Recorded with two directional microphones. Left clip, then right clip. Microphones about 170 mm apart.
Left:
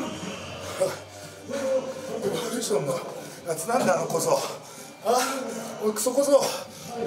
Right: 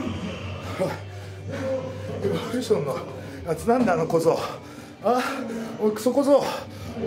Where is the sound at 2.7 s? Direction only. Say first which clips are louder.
Right 3 dB; 25° left (ahead or behind).